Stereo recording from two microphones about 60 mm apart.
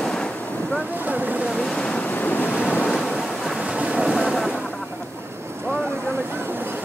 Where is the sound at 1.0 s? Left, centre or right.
Right.